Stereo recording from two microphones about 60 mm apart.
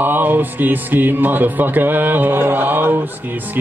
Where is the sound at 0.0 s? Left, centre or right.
Right.